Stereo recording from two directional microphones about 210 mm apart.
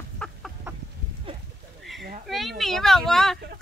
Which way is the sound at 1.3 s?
25° right (ahead or behind).